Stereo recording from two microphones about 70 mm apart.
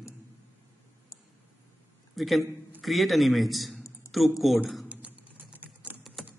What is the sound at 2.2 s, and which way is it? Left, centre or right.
A man's voice, centre.